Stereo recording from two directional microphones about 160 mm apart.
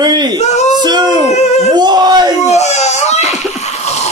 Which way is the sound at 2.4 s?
45° left (ahead or behind).